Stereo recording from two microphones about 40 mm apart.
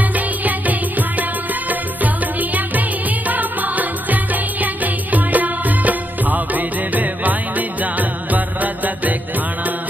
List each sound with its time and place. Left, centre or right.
0.1 s music: right